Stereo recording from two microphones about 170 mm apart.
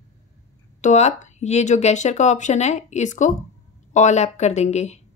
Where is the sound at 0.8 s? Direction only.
45° left (ahead or behind).